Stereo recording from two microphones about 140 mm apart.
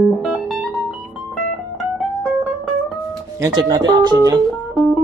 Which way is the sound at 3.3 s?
25° right (ahead or behind).